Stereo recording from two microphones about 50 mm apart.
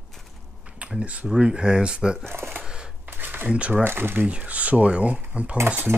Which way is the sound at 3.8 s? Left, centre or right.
Right.